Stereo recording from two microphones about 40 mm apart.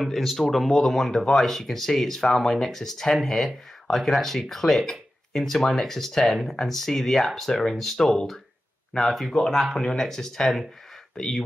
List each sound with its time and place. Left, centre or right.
0.0 s speech: centre
9.3 s speech: centre